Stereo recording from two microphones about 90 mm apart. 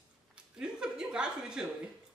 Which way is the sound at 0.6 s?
10° right (ahead or behind).